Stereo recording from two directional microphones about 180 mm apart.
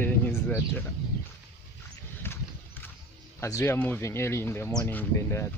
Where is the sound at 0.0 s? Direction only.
10° left (ahead or behind).